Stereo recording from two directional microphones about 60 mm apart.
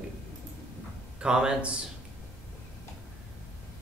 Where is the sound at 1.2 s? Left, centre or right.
Centre.